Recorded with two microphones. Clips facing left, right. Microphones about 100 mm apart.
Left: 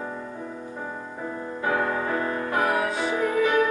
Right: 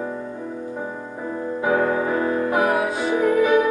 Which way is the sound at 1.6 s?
15° right (ahead or behind).